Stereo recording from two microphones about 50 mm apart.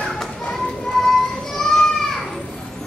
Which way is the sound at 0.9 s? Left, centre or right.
Centre.